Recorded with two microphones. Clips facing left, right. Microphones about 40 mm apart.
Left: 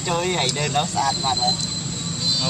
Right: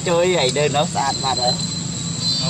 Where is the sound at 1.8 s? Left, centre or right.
Centre.